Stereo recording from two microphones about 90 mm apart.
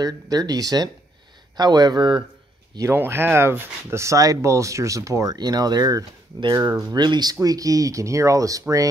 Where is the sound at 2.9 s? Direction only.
25° right (ahead or behind).